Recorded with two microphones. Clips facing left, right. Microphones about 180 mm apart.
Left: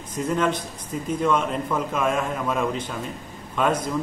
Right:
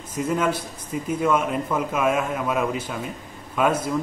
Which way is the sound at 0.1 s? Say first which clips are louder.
Even; 10° right (ahead or behind).